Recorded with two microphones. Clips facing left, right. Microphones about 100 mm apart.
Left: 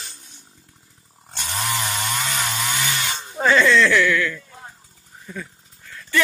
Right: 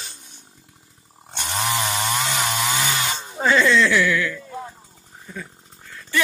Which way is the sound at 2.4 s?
20° right (ahead or behind).